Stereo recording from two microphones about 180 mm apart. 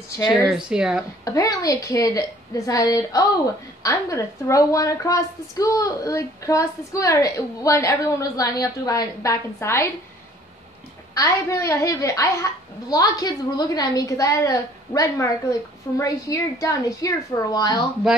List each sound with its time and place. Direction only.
0.7 s speech: 5° right (ahead or behind)
1.2 s a woman's voice: 20° left (ahead or behind)
11.1 s a woman's voice: 15° left (ahead or behind)